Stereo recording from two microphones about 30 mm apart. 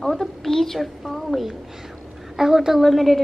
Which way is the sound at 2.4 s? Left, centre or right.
Centre.